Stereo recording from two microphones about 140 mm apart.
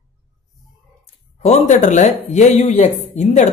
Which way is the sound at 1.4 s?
50° left (ahead or behind).